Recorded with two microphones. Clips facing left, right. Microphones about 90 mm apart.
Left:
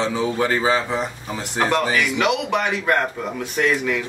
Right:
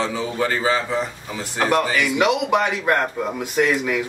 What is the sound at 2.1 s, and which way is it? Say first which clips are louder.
A man's voice: right 2 dB; 15° right (ahead or behind).